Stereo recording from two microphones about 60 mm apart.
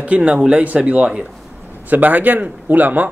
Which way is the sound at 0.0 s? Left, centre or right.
Right.